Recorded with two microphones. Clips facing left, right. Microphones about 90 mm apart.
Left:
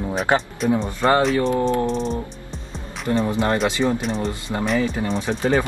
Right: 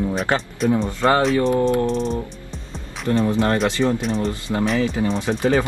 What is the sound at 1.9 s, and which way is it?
Music, centre (ahead or behind).